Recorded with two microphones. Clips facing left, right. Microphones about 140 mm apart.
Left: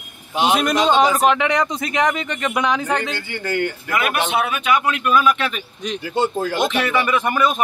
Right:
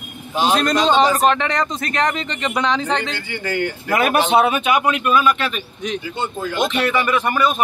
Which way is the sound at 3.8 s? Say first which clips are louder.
Right 9 dB; 40° right (ahead or behind).